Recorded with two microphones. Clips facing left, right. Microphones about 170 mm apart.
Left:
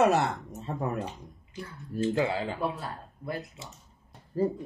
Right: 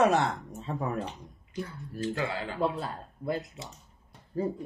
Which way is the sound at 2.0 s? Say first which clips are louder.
Left 5 dB; 25° left (ahead or behind).